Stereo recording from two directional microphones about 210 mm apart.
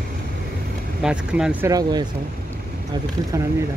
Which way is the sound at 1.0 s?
5° right (ahead or behind).